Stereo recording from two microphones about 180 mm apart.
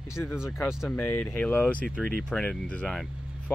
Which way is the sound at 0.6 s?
5° right (ahead or behind).